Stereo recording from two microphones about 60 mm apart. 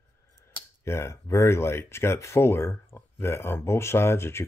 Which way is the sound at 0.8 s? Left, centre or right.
Left.